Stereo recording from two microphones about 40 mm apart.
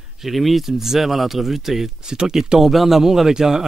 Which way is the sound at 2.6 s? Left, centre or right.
Centre.